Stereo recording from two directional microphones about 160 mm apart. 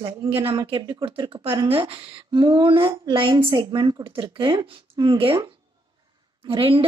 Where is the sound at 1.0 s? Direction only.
35° right (ahead or behind).